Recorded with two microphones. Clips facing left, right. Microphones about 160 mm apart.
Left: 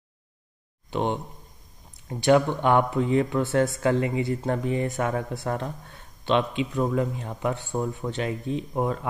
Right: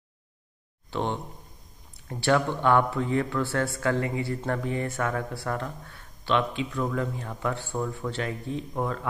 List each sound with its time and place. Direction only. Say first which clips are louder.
0.8 s speech: left 3 dB; 15° left (ahead or behind)